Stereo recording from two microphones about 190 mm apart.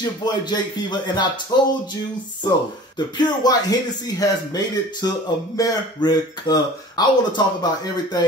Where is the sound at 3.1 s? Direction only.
20° left (ahead or behind).